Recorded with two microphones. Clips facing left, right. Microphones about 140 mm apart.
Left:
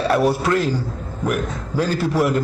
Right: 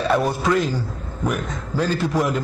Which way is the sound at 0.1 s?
10° left (ahead or behind).